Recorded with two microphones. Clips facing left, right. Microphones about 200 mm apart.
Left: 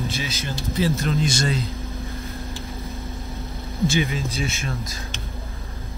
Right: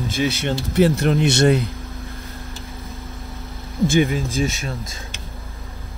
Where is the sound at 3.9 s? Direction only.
50° right (ahead or behind).